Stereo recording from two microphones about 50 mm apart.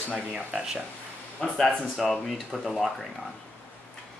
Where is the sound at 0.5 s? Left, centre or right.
Centre.